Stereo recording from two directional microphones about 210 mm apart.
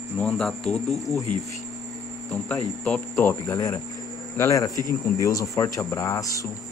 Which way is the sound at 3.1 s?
15° left (ahead or behind).